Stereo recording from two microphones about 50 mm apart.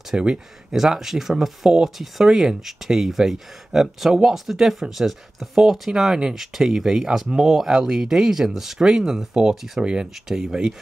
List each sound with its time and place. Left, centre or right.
0.1 s speech: centre